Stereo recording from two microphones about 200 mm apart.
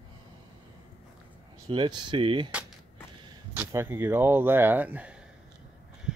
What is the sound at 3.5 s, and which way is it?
Speech, 10° right (ahead or behind).